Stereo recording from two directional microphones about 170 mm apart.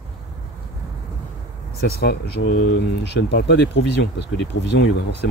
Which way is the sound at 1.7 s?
70° left (ahead or behind).